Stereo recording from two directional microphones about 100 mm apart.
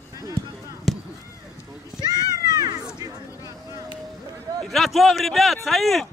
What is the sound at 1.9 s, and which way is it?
Cat, 40° right (ahead or behind).